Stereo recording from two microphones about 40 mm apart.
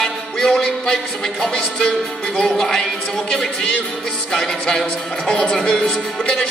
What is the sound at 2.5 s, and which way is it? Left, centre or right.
Speech, centre.